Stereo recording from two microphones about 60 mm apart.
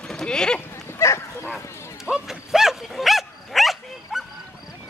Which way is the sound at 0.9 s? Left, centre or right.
Left.